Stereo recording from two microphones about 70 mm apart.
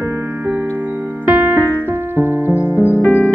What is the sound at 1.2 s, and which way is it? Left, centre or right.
Music, right.